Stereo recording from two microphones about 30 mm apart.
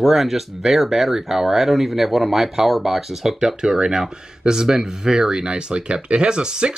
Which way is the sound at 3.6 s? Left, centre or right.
Right.